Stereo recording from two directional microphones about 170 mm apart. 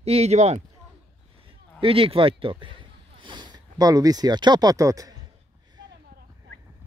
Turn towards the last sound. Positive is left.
turn(degrees=-20)  # may be behind; listen again after turning